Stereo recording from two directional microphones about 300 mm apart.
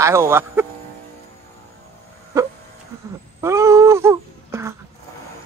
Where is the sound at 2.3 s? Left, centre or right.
Centre.